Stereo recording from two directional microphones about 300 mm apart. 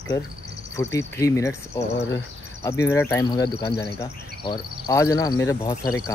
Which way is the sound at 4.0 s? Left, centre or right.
Centre.